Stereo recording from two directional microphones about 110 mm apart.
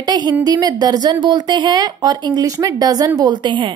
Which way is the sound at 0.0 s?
40° right (ahead or behind).